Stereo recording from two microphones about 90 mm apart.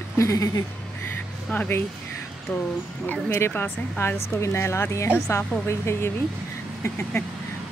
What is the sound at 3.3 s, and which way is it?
A woman's voice, 25° left (ahead or behind).